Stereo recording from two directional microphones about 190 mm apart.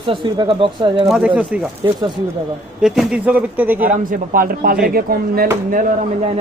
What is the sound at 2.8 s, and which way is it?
Speech, 5° right (ahead or behind).